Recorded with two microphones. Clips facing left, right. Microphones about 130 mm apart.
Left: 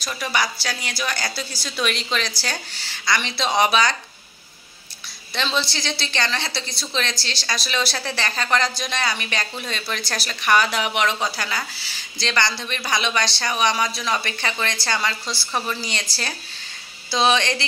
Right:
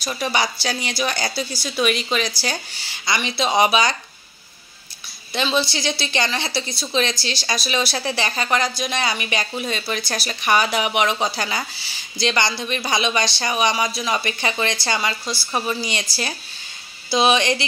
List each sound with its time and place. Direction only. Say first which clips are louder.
0.0 s a woman's voice: right 2 dB; 25° right (ahead or behind)
5.3 s speech: right 3 dB; 15° right (ahead or behind)